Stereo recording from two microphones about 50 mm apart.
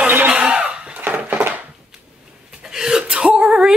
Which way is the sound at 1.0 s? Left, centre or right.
Right.